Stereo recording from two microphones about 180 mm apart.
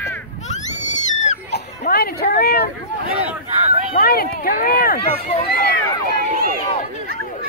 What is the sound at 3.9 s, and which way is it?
Speech, 55° left (ahead or behind).